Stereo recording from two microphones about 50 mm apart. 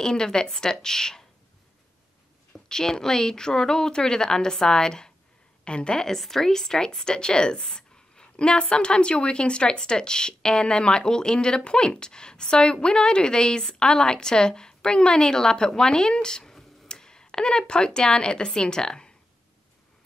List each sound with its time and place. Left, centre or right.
0.0 s speech: centre
2.5 s speech: centre